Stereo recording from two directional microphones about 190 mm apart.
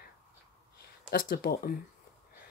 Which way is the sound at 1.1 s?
50° left (ahead or behind).